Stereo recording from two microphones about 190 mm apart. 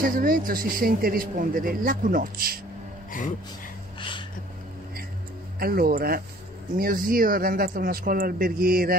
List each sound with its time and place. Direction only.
0.0 s a man's voice: 50° right (ahead or behind)
3.1 s speech: 45° left (ahead or behind)
5.6 s a man's voice: 50° right (ahead or behind)